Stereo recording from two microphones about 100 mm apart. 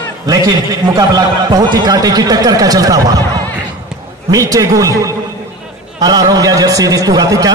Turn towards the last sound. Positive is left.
turn(degrees=-35)  # may be behind; listen again after turning